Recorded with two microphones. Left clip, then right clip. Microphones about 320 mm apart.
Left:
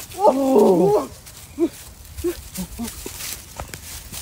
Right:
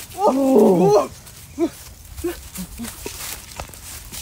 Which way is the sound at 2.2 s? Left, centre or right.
Right.